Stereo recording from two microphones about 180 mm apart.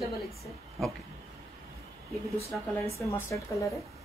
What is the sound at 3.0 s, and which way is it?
Speech, 15° left (ahead or behind).